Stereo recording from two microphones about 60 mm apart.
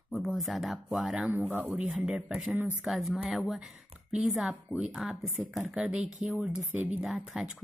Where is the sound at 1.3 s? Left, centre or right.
Right.